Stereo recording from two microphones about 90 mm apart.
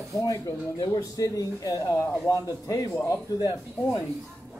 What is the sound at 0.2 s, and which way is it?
Speech, 40° left (ahead or behind).